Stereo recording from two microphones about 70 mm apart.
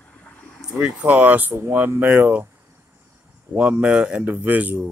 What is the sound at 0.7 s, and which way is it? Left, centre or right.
Speech, centre.